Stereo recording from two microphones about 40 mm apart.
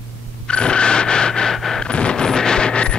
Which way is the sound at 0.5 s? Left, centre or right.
Left.